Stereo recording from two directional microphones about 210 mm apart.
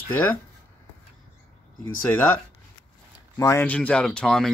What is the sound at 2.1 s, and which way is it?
Speech, 10° left (ahead or behind).